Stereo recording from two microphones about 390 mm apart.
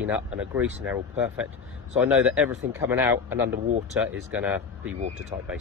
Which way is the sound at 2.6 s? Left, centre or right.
Right.